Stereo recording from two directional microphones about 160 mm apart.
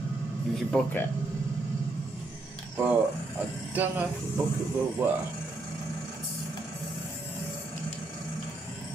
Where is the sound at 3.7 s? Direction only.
10° right (ahead or behind).